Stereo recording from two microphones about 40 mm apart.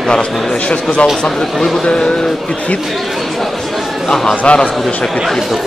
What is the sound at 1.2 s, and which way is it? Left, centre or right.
Speech, centre.